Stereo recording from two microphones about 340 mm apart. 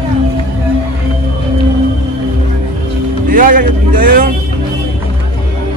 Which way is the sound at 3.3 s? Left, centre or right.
Right.